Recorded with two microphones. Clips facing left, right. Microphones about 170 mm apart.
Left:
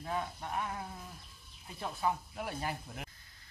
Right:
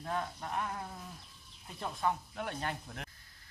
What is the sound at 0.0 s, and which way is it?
Speech, 5° left (ahead or behind).